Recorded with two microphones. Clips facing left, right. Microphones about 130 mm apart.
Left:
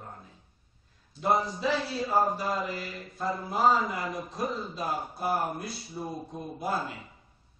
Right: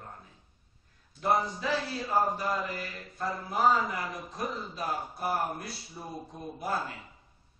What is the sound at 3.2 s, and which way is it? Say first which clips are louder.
A man's voice: left 1 dB; 25° left (ahead or behind).